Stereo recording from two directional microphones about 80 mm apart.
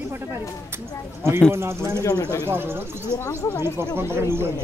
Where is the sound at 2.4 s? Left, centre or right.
Right.